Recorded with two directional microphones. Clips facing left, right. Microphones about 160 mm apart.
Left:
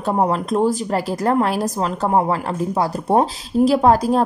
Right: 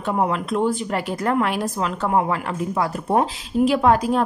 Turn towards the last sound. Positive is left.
turn(degrees=35)  # may be behind; listen again after turning